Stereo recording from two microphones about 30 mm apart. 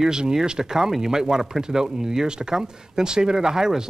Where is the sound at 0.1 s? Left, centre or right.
Right.